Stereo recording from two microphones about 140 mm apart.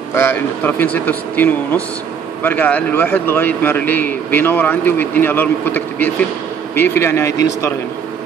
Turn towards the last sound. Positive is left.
turn(degrees=20)  # may be behind; listen again after turning